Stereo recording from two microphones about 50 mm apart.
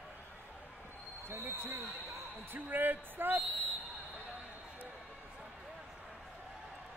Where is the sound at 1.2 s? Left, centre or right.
Right.